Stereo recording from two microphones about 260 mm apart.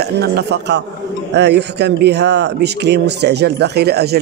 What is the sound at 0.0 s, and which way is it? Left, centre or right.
Speech, right.